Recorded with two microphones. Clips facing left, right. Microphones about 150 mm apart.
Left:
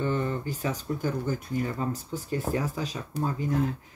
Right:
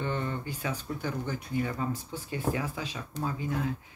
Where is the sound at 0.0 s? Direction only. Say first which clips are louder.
Left 4 dB; 40° left (ahead or behind).